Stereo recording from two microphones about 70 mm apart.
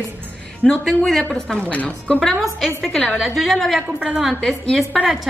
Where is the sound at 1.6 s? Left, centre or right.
Centre.